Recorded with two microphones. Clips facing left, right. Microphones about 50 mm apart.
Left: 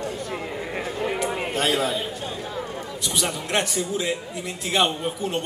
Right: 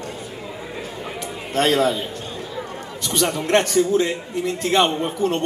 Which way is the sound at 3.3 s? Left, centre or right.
Right.